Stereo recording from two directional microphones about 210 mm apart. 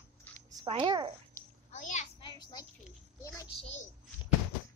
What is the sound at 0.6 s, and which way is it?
Speech, 25° right (ahead or behind).